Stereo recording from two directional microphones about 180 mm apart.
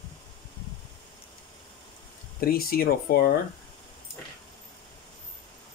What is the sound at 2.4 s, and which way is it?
Speech, 55° left (ahead or behind).